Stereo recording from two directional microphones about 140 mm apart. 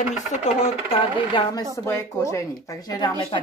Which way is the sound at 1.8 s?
20° left (ahead or behind).